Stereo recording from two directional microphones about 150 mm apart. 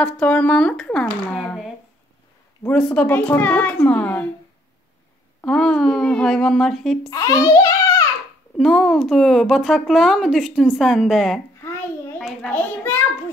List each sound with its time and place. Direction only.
0.0 s speech: 10° left (ahead or behind)
2.7 s speech: 5° left (ahead or behind)
5.4 s speech: 5° left (ahead or behind)
7.1 s child singing: 25° left (ahead or behind)
8.5 s speech: centre (ahead or behind)